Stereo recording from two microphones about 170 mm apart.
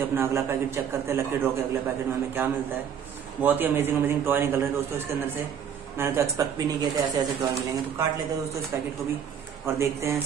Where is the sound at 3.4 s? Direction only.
10° right (ahead or behind).